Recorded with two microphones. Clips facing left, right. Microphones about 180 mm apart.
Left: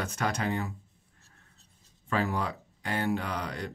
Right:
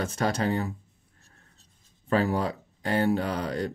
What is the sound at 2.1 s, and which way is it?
Speech, 35° right (ahead or behind).